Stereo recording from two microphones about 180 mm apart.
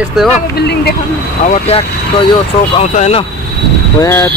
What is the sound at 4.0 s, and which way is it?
Speech, 15° left (ahead or behind).